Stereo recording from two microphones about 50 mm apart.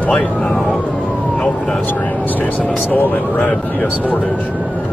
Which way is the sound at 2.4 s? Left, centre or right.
Left.